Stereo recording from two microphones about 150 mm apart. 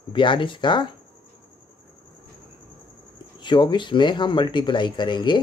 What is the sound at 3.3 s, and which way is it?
Speech, 30° left (ahead or behind).